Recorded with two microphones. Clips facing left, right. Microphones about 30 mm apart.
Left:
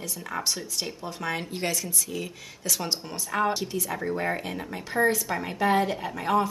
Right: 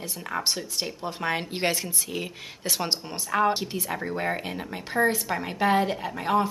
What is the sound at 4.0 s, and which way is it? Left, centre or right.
A woman's voice, centre.